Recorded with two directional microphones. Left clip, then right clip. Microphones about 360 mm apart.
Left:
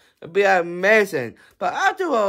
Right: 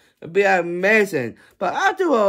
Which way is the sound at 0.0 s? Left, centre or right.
Centre.